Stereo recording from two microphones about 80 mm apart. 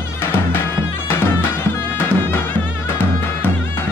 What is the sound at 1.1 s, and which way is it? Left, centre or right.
Music, left.